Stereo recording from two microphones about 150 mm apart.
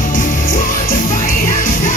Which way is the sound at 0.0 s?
65° left (ahead or behind).